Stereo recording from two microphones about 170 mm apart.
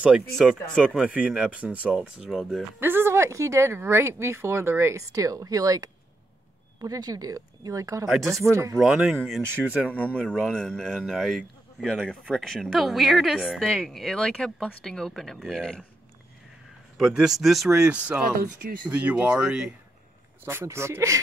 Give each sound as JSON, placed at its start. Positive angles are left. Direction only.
{"t": 0.0, "sound": "speech", "side_deg": -5}
{"t": 2.8, "sound": "speech", "side_deg": -15}
{"t": 8.7, "sound": "speech", "side_deg": -5}
{"t": 10.1, "sound": "speech", "side_deg": 5}
{"t": 16.9, "sound": "speech", "side_deg": -5}